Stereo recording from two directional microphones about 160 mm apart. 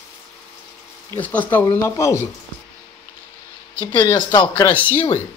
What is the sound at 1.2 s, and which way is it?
Speech, 10° left (ahead or behind).